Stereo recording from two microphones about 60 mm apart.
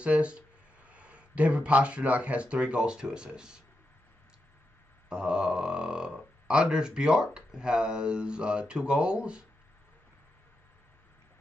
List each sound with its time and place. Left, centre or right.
0.0 s speech: centre
5.1 s speech: centre